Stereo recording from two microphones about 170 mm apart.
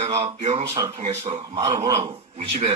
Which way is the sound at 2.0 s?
35° right (ahead or behind).